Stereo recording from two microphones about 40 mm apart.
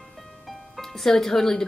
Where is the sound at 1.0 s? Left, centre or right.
Centre.